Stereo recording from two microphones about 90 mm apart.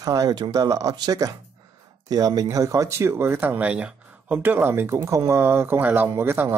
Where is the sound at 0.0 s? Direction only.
40° right (ahead or behind).